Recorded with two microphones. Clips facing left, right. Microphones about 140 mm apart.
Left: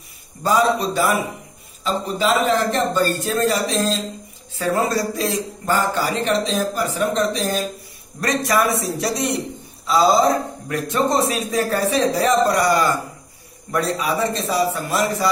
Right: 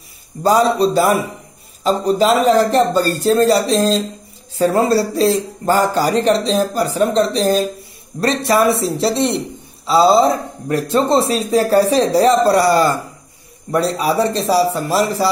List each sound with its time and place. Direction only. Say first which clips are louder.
0.4 s a man's voice: right 5 dB; 35° right (ahead or behind)